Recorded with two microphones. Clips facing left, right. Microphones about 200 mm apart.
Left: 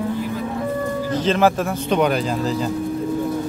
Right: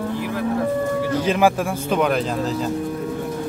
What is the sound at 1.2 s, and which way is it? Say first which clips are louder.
Speech: left 2 dB; 10° right (ahead or behind).